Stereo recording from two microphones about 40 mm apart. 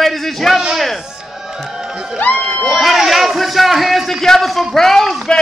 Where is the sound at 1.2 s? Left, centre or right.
Centre.